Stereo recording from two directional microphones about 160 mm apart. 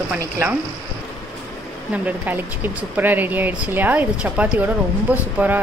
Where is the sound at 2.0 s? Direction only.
10° right (ahead or behind).